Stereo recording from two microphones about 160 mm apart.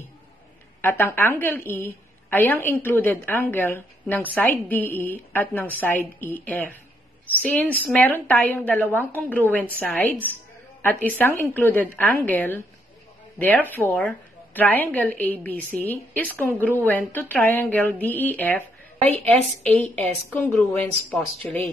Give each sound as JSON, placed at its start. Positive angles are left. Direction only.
{"t": 0.7, "sound": "a woman's voice", "side_deg": 15}
{"t": 18.9, "sound": "a woman's voice", "side_deg": -40}
{"t": 19.2, "sound": "a woman's voice", "side_deg": 10}